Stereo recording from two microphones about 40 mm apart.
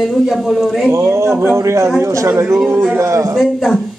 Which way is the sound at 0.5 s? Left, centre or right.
Centre.